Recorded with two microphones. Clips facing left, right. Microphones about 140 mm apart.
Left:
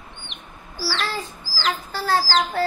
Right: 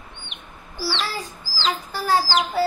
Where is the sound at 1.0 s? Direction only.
10° right (ahead or behind).